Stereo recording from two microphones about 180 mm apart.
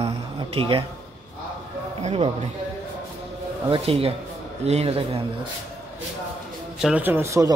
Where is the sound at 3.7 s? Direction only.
30° right (ahead or behind).